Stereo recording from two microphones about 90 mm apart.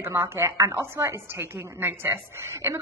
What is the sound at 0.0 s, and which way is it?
A woman's voice, 30° right (ahead or behind).